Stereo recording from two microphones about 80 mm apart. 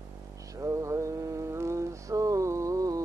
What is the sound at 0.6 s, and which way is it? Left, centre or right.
Mantra, right.